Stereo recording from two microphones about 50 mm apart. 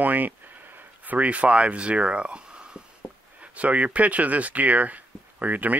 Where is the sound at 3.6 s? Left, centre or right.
Right.